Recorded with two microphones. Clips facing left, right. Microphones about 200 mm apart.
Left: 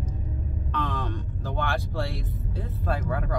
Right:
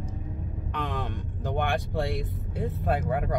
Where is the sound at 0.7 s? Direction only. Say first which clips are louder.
Left 2 dB; 15° right (ahead or behind).